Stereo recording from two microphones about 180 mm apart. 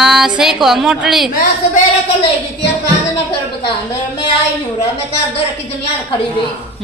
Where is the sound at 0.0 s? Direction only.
Centre (ahead or behind).